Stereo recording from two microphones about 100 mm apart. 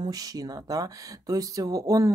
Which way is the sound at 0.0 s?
40° right (ahead or behind).